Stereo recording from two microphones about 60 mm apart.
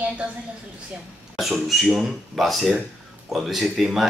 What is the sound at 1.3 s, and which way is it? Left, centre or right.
Speech, centre.